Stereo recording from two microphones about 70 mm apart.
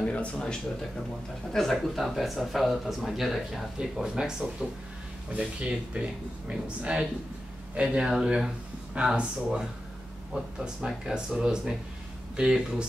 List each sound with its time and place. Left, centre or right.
0.0 s speech: centre
1.5 s speech: centre